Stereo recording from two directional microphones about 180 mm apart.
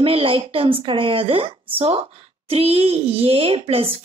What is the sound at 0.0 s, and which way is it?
A woman's voice, 30° right (ahead or behind).